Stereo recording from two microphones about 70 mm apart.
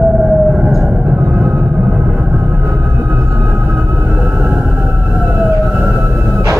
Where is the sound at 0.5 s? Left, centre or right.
Centre.